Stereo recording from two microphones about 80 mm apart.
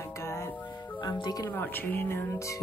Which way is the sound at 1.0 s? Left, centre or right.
Left.